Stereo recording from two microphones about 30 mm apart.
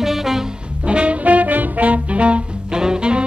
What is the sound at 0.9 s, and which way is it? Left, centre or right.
Music, right.